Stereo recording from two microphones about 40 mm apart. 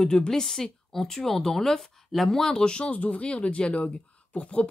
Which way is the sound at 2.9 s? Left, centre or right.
Left.